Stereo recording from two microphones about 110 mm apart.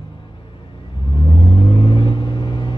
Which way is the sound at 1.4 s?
45° left (ahead or behind).